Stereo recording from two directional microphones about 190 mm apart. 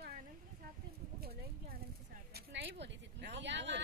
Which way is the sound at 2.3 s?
60° right (ahead or behind).